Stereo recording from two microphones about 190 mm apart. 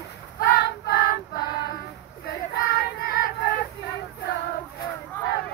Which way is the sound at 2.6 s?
55° left (ahead or behind).